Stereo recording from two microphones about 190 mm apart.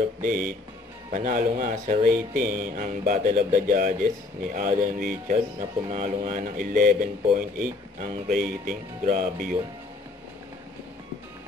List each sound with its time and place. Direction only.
0.2 s speech: 45° right (ahead or behind)